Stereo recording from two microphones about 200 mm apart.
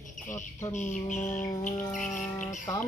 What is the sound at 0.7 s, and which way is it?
Music, 35° left (ahead or behind).